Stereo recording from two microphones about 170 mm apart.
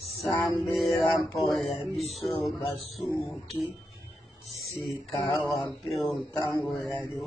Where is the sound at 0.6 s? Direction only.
Centre (ahead or behind).